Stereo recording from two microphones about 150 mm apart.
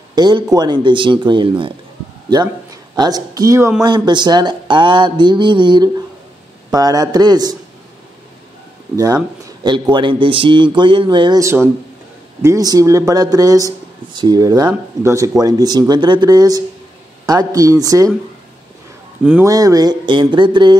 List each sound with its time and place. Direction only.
0.1 s a man's voice: 25° right (ahead or behind)
2.7 s a man's voice: 25° right (ahead or behind)
8.9 s a man's voice: 25° right (ahead or behind)
11.4 s a man's voice: 20° right (ahead or behind)
19.4 s a man's voice: 25° right (ahead or behind)